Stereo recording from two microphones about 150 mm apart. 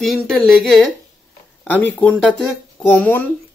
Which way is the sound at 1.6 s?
10° left (ahead or behind).